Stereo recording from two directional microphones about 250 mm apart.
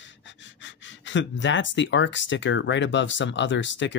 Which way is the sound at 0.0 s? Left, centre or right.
Left.